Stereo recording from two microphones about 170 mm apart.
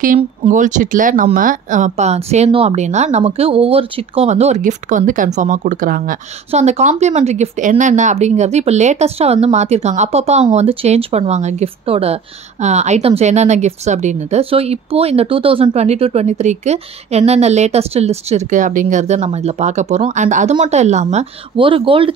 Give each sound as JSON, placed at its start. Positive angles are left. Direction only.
{"t": 0.0, "sound": "speech", "side_deg": -50}
{"t": 6.5, "sound": "speech", "side_deg": -40}